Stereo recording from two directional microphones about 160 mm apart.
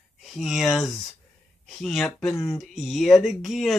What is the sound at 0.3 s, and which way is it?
Speech, centre (ahead or behind).